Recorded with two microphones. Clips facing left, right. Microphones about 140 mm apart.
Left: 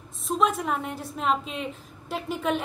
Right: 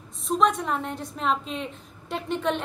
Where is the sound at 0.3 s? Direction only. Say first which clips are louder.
Right 1 dB; 5° left (ahead or behind).